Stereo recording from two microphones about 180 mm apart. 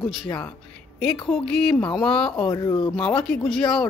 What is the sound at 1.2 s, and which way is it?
Speech, 5° left (ahead or behind).